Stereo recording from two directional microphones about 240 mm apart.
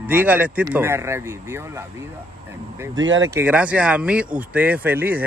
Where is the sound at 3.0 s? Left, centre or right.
Right.